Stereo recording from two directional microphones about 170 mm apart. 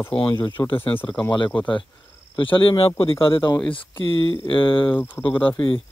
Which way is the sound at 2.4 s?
30° left (ahead or behind).